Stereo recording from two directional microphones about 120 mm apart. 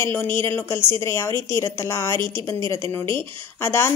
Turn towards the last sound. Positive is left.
turn(degrees=20)  # may be behind; listen again after turning